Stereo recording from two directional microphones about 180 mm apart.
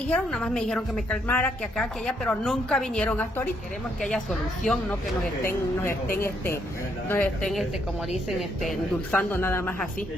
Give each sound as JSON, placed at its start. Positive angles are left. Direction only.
{"t": 0.1, "sound": "a woman's voice", "side_deg": 5}
{"t": 5.4, "sound": "speech", "side_deg": 15}
{"t": 6.0, "sound": "speech", "side_deg": 55}
{"t": 7.1, "sound": "a woman's voice", "side_deg": 5}
{"t": 9.3, "sound": "speech", "side_deg": 15}